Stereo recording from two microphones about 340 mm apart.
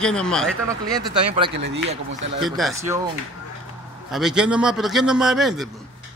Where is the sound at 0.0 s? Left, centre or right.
Centre.